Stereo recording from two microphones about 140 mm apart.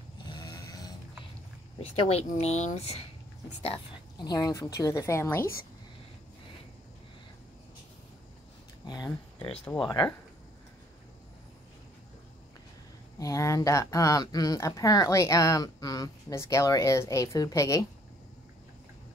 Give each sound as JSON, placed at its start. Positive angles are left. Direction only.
{"t": 0.2, "sound": "snoring", "side_deg": 30}
{"t": 1.8, "sound": "speech", "side_deg": 45}
{"t": 4.2, "sound": "a woman's voice", "side_deg": 30}
{"t": 8.8, "sound": "speech", "side_deg": 30}
{"t": 13.2, "sound": "a woman's voice", "side_deg": 20}